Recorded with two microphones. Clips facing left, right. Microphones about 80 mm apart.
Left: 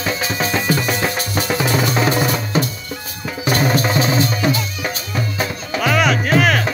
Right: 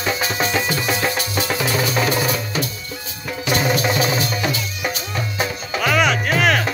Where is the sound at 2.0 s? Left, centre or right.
Left.